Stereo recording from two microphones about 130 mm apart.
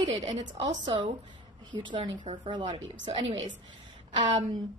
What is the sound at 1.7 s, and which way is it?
A woman's voice, 35° right (ahead or behind).